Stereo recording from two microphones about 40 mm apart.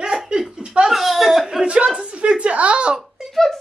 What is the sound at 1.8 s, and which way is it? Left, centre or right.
A man's voice, right.